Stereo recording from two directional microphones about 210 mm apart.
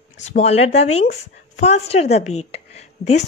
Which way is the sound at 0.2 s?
30° left (ahead or behind).